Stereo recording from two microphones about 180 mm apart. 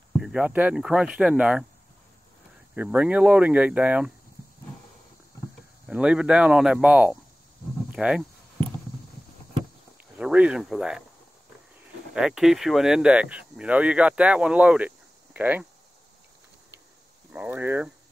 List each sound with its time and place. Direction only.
0.2 s speech: 5° right (ahead or behind)
2.7 s speech: 10° right (ahead or behind)
5.9 s speech: 5° right (ahead or behind)
10.1 s speech: 5° right (ahead or behind)
12.2 s speech: centre (ahead or behind)
17.3 s speech: 10° right (ahead or behind)